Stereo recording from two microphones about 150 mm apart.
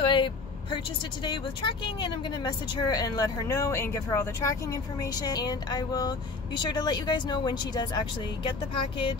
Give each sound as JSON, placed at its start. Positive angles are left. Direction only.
{"t": 0.0, "sound": "vehicle", "side_deg": 35}
{"t": 1.2, "sound": "speech", "side_deg": 30}